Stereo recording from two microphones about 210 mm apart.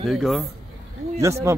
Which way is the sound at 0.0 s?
Centre (ahead or behind).